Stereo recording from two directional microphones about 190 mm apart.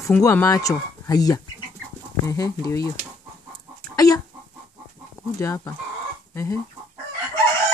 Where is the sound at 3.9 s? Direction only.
20° left (ahead or behind).